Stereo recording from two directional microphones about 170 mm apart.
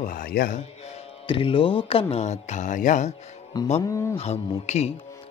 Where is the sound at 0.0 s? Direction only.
55° left (ahead or behind).